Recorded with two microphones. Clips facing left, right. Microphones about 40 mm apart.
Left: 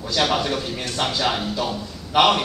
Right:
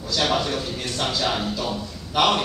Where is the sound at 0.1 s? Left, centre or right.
Left.